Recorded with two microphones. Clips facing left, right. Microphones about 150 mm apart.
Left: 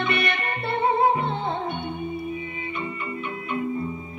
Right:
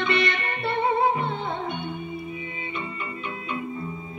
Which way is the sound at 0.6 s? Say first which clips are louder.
Left 1 dB; 25° right (ahead or behind).